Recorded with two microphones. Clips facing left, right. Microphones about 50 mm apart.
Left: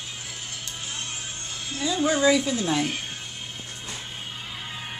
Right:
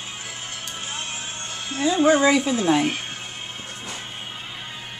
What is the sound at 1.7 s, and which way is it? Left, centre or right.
Speech, right.